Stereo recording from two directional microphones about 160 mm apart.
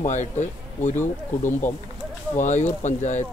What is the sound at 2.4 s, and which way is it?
Speech, 50° left (ahead or behind).